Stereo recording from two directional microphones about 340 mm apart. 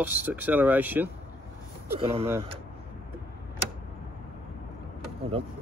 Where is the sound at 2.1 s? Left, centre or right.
Centre.